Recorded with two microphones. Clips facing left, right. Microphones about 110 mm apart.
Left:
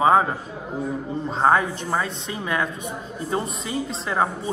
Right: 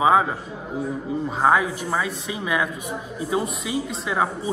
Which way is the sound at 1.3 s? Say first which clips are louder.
Left 1 dB; 5° right (ahead or behind).